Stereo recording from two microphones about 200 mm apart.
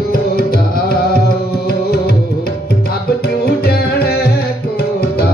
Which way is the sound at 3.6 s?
50° left (ahead or behind).